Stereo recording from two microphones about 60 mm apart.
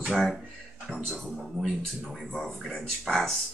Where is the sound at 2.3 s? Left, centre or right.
Centre.